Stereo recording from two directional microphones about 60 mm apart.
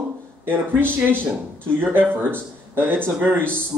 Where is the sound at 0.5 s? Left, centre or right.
Right.